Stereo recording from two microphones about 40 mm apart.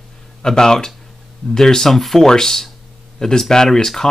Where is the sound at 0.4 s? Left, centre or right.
Centre.